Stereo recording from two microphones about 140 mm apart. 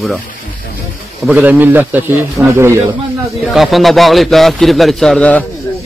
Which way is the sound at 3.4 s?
Centre (ahead or behind).